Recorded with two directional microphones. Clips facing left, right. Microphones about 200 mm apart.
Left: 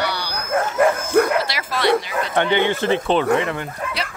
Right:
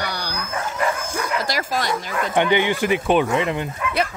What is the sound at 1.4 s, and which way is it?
Speech, 45° right (ahead or behind).